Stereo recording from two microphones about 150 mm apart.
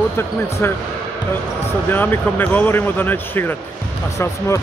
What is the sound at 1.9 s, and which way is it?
Speech, 15° left (ahead or behind).